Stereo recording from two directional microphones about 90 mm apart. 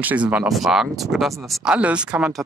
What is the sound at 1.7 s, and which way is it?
Speech, 15° right (ahead or behind).